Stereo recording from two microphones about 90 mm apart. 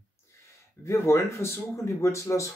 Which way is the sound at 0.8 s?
30° left (ahead or behind).